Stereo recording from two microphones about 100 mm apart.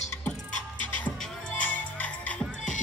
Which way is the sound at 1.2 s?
10° left (ahead or behind).